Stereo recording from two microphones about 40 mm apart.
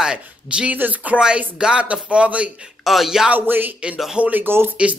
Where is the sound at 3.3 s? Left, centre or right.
Right.